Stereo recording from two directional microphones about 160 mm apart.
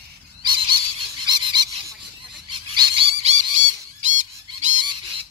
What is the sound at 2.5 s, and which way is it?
Frog, 30° right (ahead or behind).